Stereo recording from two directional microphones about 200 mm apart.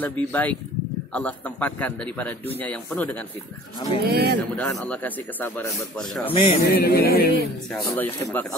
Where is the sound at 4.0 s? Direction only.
55° right (ahead or behind).